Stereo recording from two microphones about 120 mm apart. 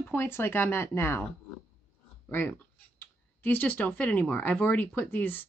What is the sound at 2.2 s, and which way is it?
Speech, 15° left (ahead or behind).